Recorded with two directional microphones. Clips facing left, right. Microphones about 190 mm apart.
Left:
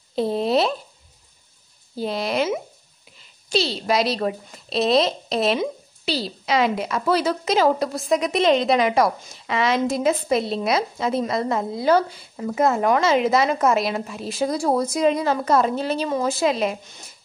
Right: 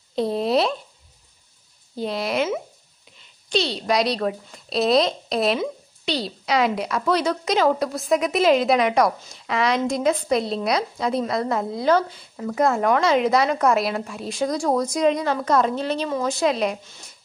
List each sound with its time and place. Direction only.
0.1 s speech: centre (ahead or behind)
2.0 s a woman's voice: centre (ahead or behind)